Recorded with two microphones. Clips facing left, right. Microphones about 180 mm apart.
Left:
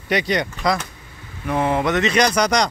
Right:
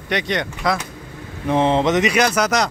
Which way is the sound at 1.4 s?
25° right (ahead or behind).